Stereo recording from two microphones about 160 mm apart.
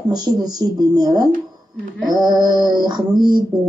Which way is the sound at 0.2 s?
25° right (ahead or behind).